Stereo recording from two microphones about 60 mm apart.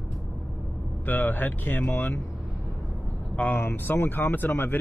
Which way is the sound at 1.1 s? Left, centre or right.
Left.